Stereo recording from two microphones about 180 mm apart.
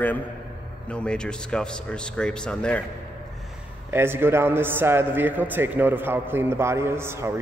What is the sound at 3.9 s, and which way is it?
A man's voice, 15° right (ahead or behind).